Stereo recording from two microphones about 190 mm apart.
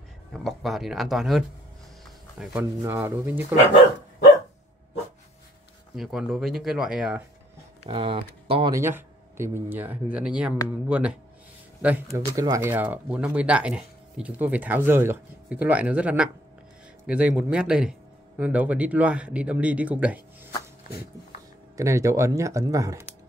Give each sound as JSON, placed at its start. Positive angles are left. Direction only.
{"t": 0.3, "sound": "speech", "side_deg": 0}
{"t": 5.9, "sound": "speech", "side_deg": 0}
{"t": 7.8, "sound": "speech", "side_deg": -30}
{"t": 8.7, "sound": "speech", "side_deg": -15}
{"t": 21.7, "sound": "speech", "side_deg": -15}